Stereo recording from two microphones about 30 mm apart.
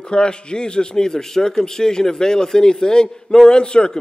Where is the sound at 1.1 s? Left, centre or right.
Centre.